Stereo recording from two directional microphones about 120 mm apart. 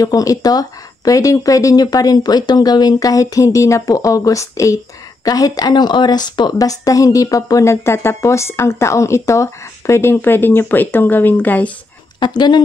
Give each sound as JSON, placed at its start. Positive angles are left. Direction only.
{"t": 0.0, "sound": "a woman's voice", "side_deg": 30}
{"t": 12.2, "sound": "speech", "side_deg": 40}